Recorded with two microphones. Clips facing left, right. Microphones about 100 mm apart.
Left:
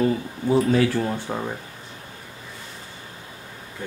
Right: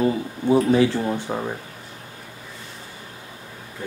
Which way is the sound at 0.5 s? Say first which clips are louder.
Right 2 dB; 20° right (ahead or behind).